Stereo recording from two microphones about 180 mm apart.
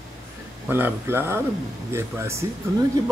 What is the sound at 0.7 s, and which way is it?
Speech, 10° right (ahead or behind).